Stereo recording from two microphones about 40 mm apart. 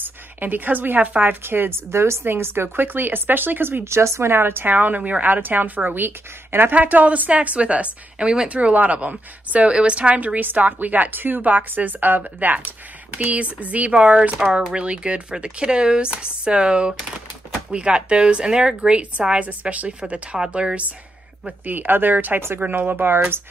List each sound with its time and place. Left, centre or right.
0.0 s a woman's voice: right
1.4 s speech: right
3.8 s speech: right
4.7 s a woman's voice: right
6.7 s a woman's voice: right
8.5 s a woman's voice: right
13.2 s a woman's voice: right
20.5 s speech: right
21.6 s a woman's voice: right